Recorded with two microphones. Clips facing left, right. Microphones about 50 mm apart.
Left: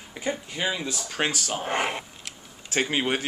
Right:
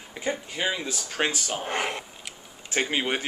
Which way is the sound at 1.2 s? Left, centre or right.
Centre.